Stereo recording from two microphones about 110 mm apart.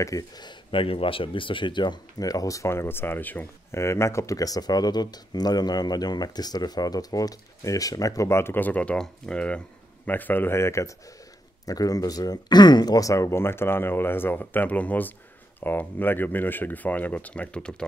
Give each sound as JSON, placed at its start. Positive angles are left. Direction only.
{"t": 0.0, "sound": "speech", "side_deg": 30}
{"t": 0.5, "sound": "speech", "side_deg": 50}